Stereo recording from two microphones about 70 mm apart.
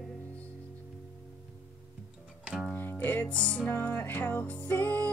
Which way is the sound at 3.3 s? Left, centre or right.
Centre.